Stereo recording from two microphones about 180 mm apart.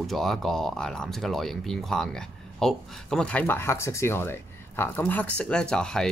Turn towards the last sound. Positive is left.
turn(degrees=5)  # may be behind; listen again after turning